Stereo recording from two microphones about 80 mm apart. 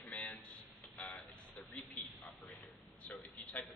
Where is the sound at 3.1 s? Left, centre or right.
Centre.